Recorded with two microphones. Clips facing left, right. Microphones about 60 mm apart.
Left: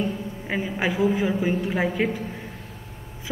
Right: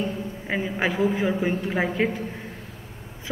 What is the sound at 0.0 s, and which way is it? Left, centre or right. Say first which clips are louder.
A man's voice: left 1 dB; centre.